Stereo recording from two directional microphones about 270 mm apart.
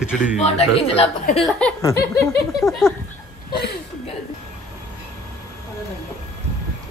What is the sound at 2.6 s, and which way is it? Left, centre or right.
Speech, centre.